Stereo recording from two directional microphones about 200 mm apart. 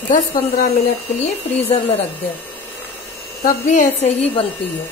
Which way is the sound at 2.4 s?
10° left (ahead or behind).